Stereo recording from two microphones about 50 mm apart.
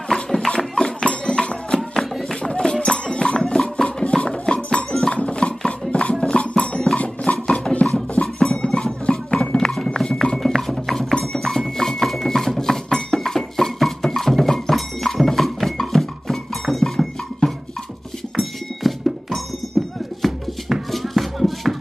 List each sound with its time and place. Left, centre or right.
0.1 s a sound: centre
0.5 s music: centre
1.8 s music: centre
2.4 s music: centre
9.0 s a sound: centre
10.3 s music: centre